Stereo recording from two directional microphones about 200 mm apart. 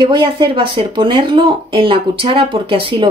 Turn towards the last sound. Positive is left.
turn(degrees=-25)  # may be behind; listen again after turning